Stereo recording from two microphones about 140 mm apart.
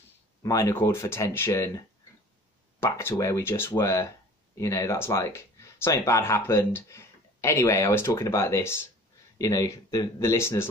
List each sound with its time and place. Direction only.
0.4 s speech: 25° left (ahead or behind)
2.8 s speech: 20° left (ahead or behind)